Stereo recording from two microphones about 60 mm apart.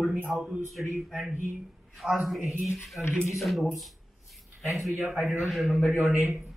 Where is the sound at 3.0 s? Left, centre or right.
Centre.